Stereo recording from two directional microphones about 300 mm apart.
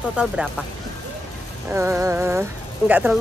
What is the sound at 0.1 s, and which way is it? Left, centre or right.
Speech, centre.